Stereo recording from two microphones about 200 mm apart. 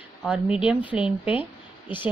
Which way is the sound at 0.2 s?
5° right (ahead or behind).